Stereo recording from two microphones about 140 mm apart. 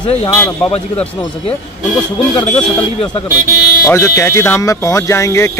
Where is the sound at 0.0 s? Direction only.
40° left (ahead or behind).